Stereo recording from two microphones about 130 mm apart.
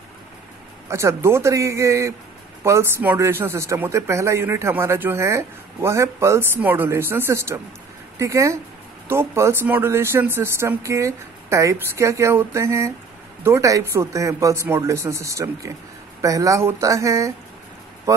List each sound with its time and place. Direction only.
0.8 s speech: 20° right (ahead or behind)